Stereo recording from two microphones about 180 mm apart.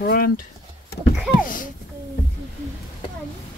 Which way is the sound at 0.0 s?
55° left (ahead or behind).